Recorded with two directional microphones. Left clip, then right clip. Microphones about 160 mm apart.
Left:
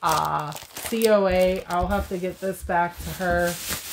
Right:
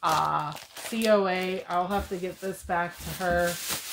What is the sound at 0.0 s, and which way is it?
Crumpling, 40° left (ahead or behind).